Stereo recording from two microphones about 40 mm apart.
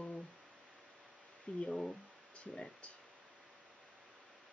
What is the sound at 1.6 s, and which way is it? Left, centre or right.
Speech, centre.